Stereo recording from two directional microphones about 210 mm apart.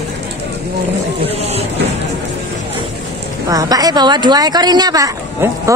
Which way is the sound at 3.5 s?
15° right (ahead or behind).